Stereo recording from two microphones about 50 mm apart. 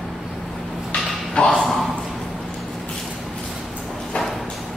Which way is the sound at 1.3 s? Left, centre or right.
Centre.